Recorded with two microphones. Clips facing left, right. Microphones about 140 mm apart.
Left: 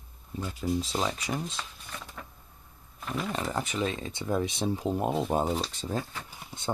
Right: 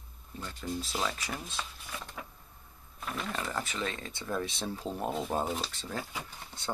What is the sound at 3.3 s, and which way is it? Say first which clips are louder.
Speech: left 4 dB; 20° left (ahead or behind).